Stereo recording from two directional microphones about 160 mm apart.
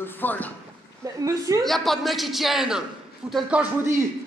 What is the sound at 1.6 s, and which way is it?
A woman's voice, centre (ahead or behind).